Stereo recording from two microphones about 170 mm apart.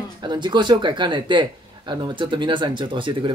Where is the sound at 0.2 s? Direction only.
25° right (ahead or behind).